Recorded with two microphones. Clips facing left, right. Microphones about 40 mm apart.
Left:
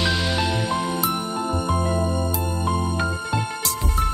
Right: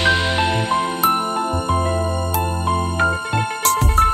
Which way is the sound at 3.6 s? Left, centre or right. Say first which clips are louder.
Right 9 dB; right.